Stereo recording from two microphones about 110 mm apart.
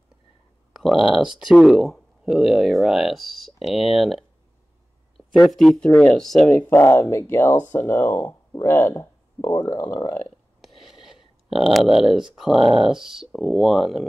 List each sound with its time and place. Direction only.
0.7 s speech: 5° right (ahead or behind)
5.4 s speech: centre (ahead or behind)
6.5 s speech: 20° left (ahead or behind)
10.8 s speech: 5° right (ahead or behind)